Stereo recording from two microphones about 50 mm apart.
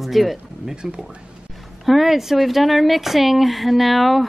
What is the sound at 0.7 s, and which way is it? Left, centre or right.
Speech, centre.